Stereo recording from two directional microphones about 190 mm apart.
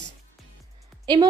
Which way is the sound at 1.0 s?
20° right (ahead or behind).